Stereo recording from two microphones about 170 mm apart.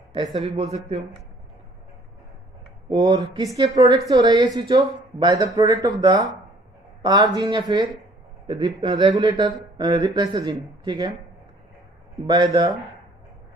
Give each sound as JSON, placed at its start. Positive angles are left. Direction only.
{"t": 0.3, "sound": "a man's voice", "side_deg": -40}
{"t": 2.9, "sound": "speech", "side_deg": -30}
{"t": 12.2, "sound": "speech", "side_deg": -25}